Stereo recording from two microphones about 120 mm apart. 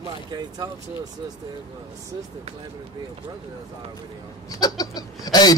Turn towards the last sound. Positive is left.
turn(degrees=35)  # may be behind; listen again after turning